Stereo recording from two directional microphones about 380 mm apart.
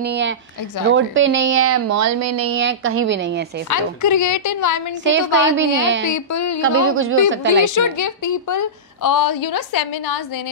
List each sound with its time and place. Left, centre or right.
0.0 s a woman's voice: right
3.7 s a woman's voice: left
5.0 s a woman's voice: right
6.1 s a woman's voice: left
6.6 s speech: right
7.6 s a woman's voice: left